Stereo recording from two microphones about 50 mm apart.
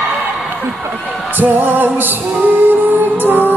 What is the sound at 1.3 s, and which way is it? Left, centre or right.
Music, right.